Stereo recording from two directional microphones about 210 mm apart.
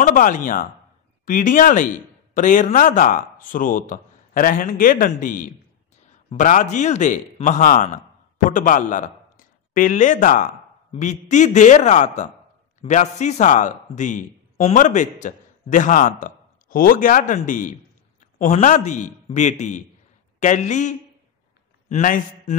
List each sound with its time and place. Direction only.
0.0 s a man's voice: 40° left (ahead or behind)